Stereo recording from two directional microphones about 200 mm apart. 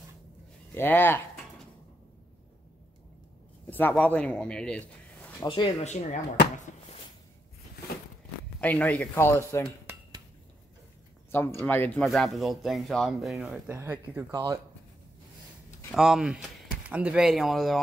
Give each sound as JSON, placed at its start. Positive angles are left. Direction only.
{"t": 0.7, "sound": "speech", "side_deg": 10}
{"t": 3.7, "sound": "speech", "side_deg": 10}
{"t": 5.4, "sound": "speech", "side_deg": 25}
{"t": 8.5, "sound": "speech", "side_deg": 5}
{"t": 11.6, "sound": "speech", "side_deg": 10}
{"t": 15.9, "sound": "speech", "side_deg": 0}